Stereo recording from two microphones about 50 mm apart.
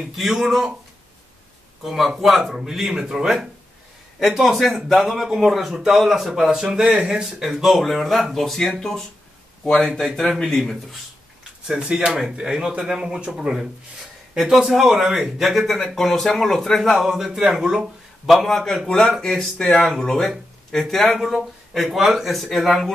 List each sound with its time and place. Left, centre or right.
0.1 s speech: centre
1.8 s speech: centre
11.8 s speech: centre
18.3 s speech: centre